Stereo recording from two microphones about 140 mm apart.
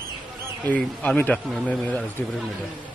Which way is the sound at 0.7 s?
10° left (ahead or behind).